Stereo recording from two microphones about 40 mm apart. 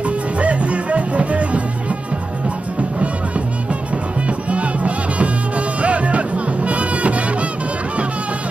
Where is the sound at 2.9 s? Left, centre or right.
Right.